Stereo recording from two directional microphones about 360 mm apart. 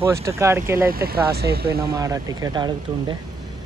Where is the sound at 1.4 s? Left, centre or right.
Right.